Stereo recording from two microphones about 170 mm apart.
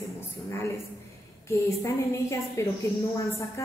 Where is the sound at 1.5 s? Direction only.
15° left (ahead or behind).